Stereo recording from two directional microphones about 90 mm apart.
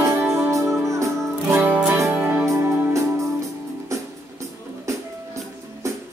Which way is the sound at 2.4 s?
35° right (ahead or behind).